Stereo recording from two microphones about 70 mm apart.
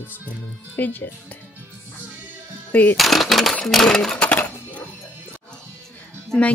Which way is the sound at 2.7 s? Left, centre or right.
Left.